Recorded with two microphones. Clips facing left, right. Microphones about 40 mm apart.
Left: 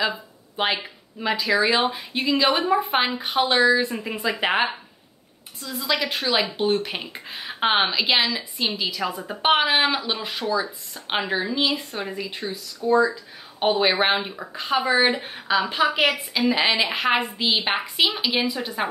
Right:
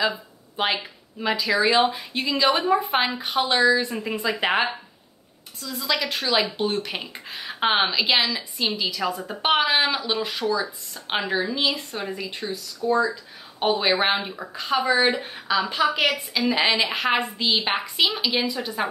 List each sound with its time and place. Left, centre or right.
0.6 s speech: centre
5.6 s a woman's voice: left
6.3 s speech: centre
14.9 s a woman's voice: left
16.1 s speech: centre